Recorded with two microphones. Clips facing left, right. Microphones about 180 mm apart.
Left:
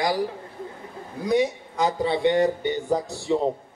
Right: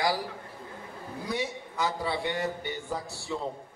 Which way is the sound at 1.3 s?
15° left (ahead or behind).